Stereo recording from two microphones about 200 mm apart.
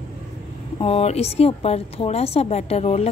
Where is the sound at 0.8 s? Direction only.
30° left (ahead or behind).